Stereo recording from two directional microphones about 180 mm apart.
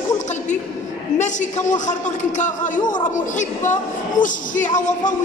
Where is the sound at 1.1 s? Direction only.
40° left (ahead or behind).